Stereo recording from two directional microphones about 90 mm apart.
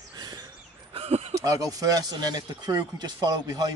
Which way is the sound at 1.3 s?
40° right (ahead or behind).